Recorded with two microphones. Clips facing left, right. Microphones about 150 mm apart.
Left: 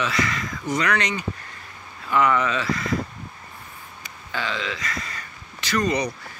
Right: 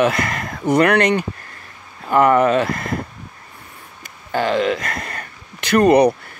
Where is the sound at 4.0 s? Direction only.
50° right (ahead or behind).